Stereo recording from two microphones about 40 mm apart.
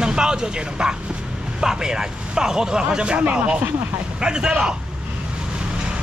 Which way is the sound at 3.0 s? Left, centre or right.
Right.